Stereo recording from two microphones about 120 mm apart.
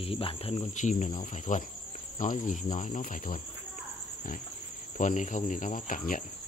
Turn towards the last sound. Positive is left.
turn(degrees=90)